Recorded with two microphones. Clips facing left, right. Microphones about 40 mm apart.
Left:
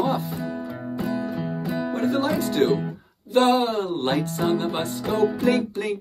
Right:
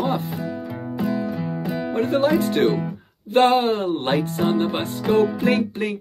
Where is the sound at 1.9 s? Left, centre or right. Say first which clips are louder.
Right 5 dB; right.